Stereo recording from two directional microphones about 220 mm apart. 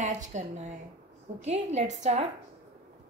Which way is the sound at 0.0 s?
35° right (ahead or behind).